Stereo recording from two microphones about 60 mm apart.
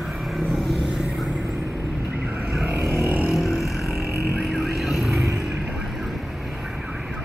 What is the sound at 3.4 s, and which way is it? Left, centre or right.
Vehicle, centre.